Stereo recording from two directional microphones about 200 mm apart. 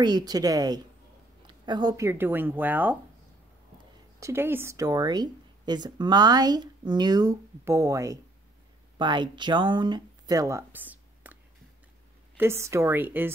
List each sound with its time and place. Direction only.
0.0 s speech: 20° right (ahead or behind)
4.2 s speech: 10° right (ahead or behind)
12.4 s a woman's voice: 10° right (ahead or behind)